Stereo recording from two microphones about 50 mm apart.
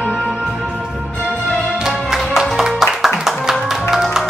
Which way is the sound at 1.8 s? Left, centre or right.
Centre.